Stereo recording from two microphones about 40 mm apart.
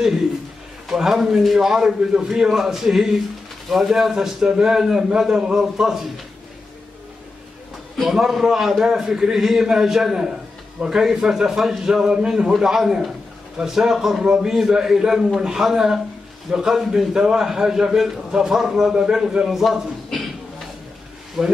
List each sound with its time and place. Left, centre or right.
0.8 s a man's voice: centre
2.2 s a man's voice: centre
8.0 s a man's voice: centre
9.1 s a man's voice: centre
9.4 s a man's voice: centre
19.5 s a sound: centre
21.4 s a man's voice: centre